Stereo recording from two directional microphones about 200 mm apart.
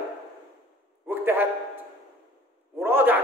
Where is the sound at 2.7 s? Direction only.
10° right (ahead or behind).